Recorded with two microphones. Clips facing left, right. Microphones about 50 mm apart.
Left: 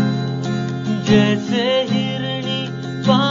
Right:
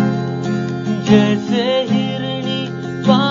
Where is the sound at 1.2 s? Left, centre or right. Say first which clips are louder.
Right 1 dB; left.